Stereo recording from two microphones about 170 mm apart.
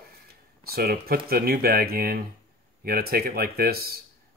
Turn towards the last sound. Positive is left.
turn(degrees=-65)  # may be behind; listen again after turning